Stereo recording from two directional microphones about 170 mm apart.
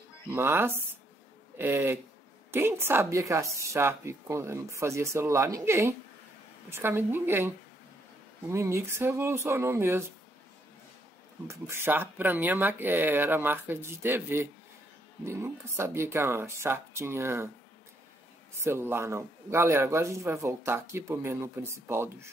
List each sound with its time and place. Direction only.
0.3 s a man's voice: 15° right (ahead or behind)
11.4 s a man's voice: 15° right (ahead or behind)
18.6 s a man's voice: 15° right (ahead or behind)